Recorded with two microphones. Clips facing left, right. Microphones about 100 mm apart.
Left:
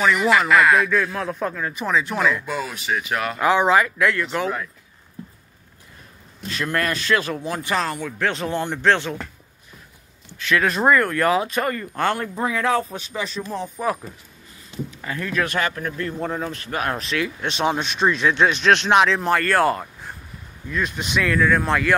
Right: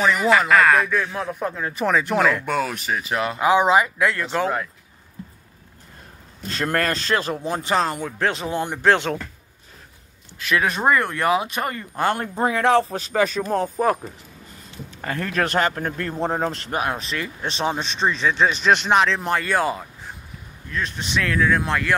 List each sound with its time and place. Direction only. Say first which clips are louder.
0.0 s speech: even; 30° right (ahead or behind)
0.7 s speech: left 1 dB; centre (ahead or behind)
1.0 s speech: left 1 dB; 20° right (ahead or behind)
1.6 s speech: right 2 dB; 35° right (ahead or behind)
1.9 s speech: right 2 dB; 60° right (ahead or behind)
2.9 s speech: even; 30° right (ahead or behind)
6.5 s speech: right 1 dB; 40° right (ahead or behind); by 8.3 s 25° right (ahead or behind)
8.4 s speech: left 1 dB; 10° right (ahead or behind)
10.6 s speech: left 2 dB; 10° right (ahead or behind)
11.0 s speech: left 1 dB; 25° right (ahead or behind)
12.2 s speech: right 2 dB; 35° right (ahead or behind)
13.2 s speech: right 7 dB; 50° right (ahead or behind)
15.0 s speech: right 2 dB; 40° right (ahead or behind)
17.0 s speech: left 3 dB; centre (ahead or behind)